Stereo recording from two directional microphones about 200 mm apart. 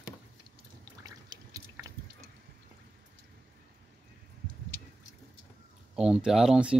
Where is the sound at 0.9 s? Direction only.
20° right (ahead or behind).